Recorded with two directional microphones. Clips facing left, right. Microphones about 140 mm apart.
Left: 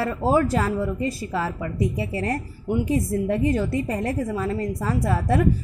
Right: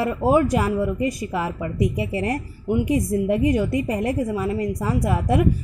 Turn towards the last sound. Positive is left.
turn(degrees=-15)  # may be behind; listen again after turning